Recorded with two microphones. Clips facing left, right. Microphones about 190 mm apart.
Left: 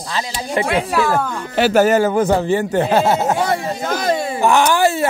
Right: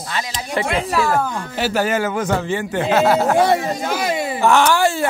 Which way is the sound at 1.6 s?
60° left (ahead or behind).